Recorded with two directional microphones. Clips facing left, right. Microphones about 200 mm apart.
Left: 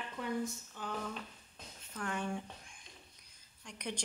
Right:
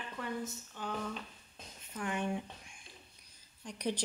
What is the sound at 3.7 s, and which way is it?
Speech, 35° right (ahead or behind).